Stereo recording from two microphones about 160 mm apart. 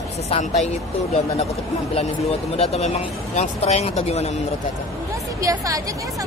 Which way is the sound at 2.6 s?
45° left (ahead or behind).